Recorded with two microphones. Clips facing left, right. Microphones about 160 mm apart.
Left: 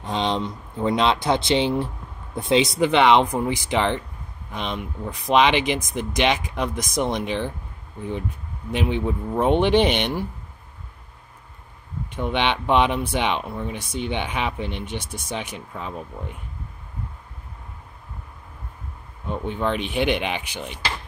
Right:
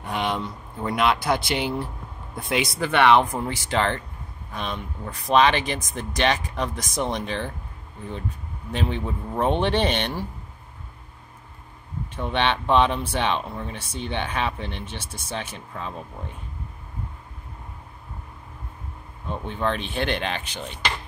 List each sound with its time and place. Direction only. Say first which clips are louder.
0.0 s speech: left 3 dB; 25° left (ahead or behind)
8.7 s speech: left 4 dB; 15° left (ahead or behind)
12.2 s speech: left 1 dB; 15° left (ahead or behind)
19.2 s speech: left 2 dB; 15° left (ahead or behind)